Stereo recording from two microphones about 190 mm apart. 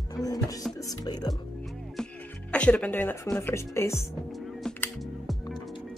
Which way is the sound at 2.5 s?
5° left (ahead or behind).